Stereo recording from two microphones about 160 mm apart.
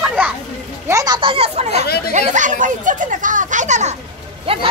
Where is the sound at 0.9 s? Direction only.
20° right (ahead or behind); by 3.9 s 45° right (ahead or behind).